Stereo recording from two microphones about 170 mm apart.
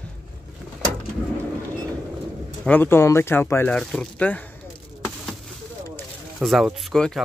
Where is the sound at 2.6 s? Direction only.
10° left (ahead or behind).